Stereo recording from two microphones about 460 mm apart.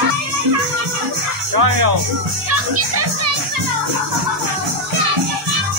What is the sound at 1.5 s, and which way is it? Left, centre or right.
Speech, right.